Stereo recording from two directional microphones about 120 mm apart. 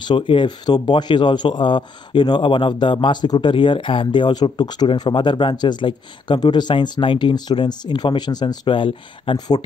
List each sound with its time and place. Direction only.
0.0 s speech: 40° left (ahead or behind)